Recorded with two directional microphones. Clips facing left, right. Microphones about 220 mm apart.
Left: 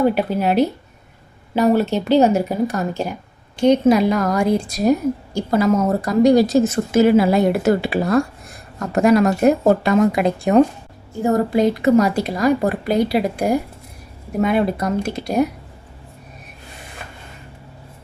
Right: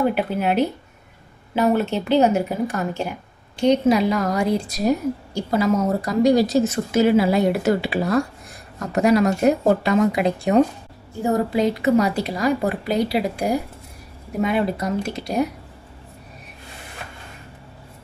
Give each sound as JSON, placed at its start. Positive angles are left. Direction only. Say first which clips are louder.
{"t": 0.1, "sound": "speech", "louder": "left 3 dB", "side_deg": 40}